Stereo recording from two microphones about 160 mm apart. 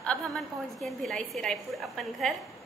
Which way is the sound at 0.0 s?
5° left (ahead or behind).